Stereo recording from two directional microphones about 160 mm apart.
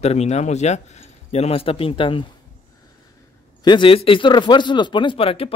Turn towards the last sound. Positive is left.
turn(degrees=35)  # may be behind; listen again after turning